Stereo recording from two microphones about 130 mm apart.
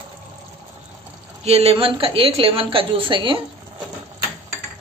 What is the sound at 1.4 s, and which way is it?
A woman's voice, 50° right (ahead or behind).